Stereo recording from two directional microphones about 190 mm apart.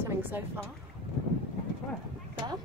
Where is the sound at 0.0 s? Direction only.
10° right (ahead or behind).